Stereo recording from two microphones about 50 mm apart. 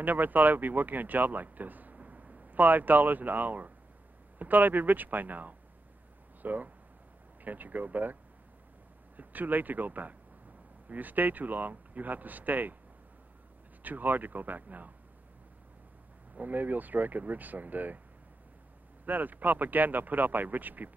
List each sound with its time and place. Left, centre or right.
0.0 s speech: right
13.8 s speech: right
16.3 s speech: right
19.0 s speech: right